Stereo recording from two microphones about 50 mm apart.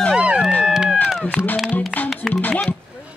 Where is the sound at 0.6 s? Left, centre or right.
Centre.